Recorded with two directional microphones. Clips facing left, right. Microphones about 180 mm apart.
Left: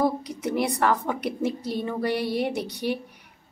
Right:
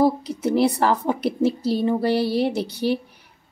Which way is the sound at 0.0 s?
30° right (ahead or behind).